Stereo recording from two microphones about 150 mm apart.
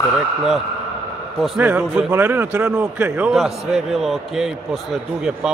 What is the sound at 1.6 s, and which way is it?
A man's voice, 10° right (ahead or behind).